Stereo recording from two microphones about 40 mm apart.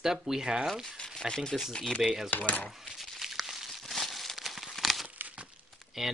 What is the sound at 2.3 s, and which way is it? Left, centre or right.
Speech, left.